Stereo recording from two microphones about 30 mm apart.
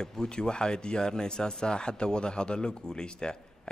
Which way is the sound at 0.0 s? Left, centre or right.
Left.